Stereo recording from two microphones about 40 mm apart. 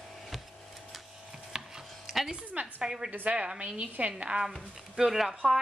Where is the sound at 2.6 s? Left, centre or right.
Right.